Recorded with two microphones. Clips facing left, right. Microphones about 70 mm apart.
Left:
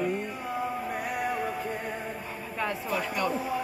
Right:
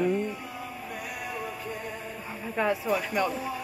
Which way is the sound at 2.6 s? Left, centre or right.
Centre.